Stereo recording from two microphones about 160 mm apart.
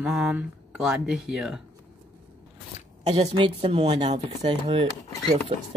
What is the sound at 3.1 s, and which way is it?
Speech, 35° right (ahead or behind).